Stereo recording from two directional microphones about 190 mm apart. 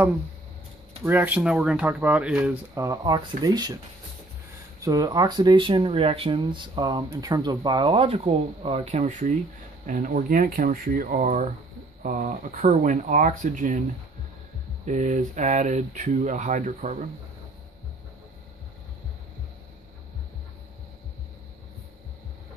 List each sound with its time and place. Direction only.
1.0 s speech: 10° right (ahead or behind)
4.8 s speech: 20° right (ahead or behind); by 13.8 s 40° right (ahead or behind)
14.9 s speech: 40° right (ahead or behind)